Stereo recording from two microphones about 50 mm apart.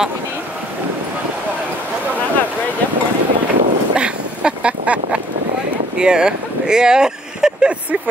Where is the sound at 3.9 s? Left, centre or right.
Centre.